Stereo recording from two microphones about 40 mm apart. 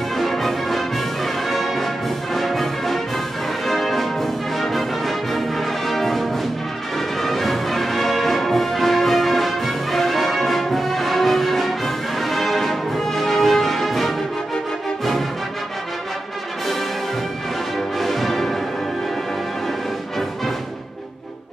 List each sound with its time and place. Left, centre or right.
0.2 s music: centre
5.9 s brass instrument: centre
7.2 s music: centre
17.7 s music: centre